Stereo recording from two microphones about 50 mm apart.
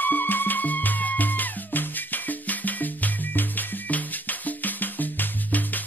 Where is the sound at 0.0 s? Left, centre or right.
Left.